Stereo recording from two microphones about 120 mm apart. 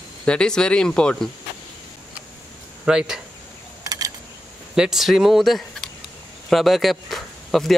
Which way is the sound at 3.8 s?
30° right (ahead or behind).